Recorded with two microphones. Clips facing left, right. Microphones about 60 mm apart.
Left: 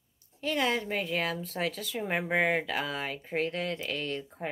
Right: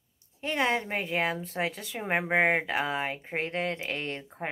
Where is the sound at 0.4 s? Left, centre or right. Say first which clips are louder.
Right 1 dB; right.